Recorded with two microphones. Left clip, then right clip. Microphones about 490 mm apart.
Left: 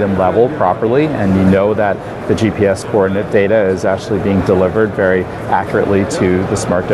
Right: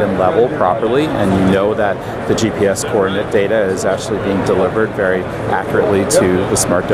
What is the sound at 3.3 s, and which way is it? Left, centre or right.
Speech, left.